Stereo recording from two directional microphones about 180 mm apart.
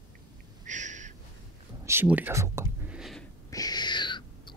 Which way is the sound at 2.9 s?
Centre (ahead or behind).